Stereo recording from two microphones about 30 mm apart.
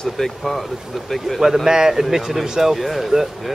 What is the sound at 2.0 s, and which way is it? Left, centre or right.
Speech, centre.